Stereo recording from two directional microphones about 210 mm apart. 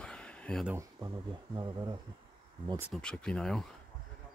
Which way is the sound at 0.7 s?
20° right (ahead or behind).